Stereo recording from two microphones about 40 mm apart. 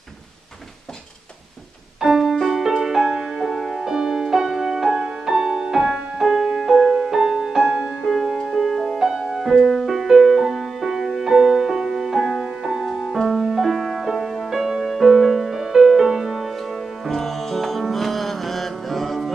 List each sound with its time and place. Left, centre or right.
2.0 s music: centre
7.6 s music: centre
8.0 s music: centre
9.0 s music: centre
16.7 s music: centre